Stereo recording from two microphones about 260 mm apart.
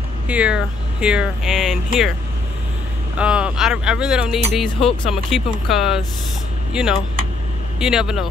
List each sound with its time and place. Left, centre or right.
0.3 s speech: centre
3.2 s speech: centre